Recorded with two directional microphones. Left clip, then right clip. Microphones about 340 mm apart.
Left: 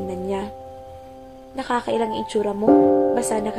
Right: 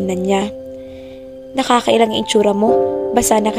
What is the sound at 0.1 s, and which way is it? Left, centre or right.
Speech, right.